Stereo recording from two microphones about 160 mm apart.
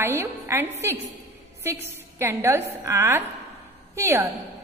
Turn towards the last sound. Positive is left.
turn(degrees=-15)  # may be behind; listen again after turning